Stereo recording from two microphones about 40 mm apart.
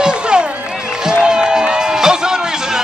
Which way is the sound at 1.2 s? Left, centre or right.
Centre.